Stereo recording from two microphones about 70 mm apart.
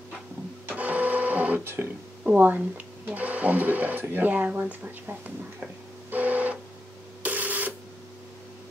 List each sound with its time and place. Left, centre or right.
0.7 s printer: right
1.6 s speech: right
6.0 s printer: right